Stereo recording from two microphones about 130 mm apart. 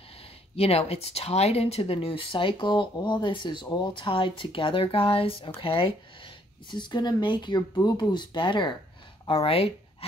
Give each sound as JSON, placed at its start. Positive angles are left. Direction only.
{"t": 0.6, "sound": "speech", "side_deg": 50}
{"t": 9.3, "sound": "speech", "side_deg": 50}